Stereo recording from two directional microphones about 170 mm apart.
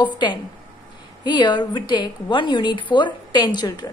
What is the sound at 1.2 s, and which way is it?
A woman's voice, 25° left (ahead or behind).